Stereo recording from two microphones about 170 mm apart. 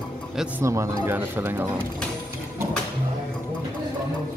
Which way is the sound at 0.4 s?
15° right (ahead or behind).